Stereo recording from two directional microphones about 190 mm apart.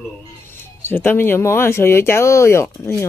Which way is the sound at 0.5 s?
10° left (ahead or behind).